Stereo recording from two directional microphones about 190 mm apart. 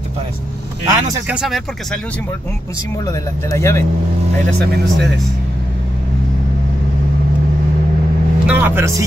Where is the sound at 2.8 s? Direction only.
15° left (ahead or behind).